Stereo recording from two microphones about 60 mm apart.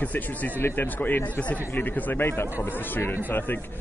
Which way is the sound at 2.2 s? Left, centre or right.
Left.